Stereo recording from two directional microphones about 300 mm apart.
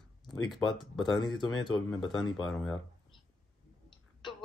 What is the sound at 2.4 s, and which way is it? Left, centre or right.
Speech, centre.